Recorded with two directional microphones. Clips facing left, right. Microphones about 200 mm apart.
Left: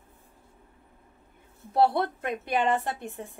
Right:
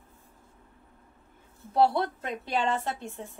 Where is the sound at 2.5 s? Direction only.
15° left (ahead or behind).